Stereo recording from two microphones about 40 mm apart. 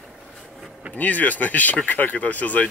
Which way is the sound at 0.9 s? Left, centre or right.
Left.